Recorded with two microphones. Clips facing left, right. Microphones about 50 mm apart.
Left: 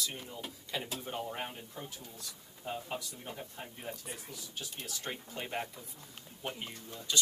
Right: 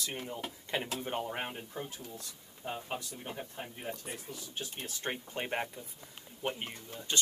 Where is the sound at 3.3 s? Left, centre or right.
Right.